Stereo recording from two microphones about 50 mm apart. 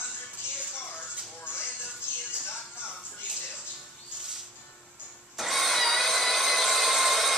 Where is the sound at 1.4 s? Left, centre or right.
Left.